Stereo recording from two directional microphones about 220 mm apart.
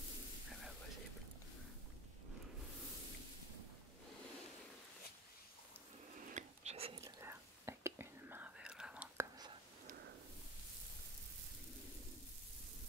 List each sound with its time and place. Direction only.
6.3 s whispering: 30° right (ahead or behind)
7.0 s whispering: 10° right (ahead or behind)